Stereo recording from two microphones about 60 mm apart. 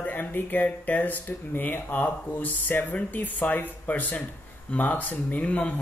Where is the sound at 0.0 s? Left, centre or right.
Left.